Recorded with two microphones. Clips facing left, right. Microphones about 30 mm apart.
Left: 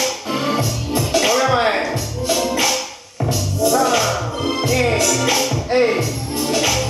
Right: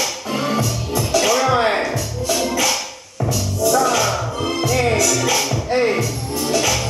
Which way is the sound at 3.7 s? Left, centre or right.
Centre.